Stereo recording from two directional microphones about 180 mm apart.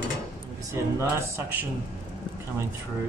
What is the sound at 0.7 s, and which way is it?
Speech, 15° right (ahead or behind).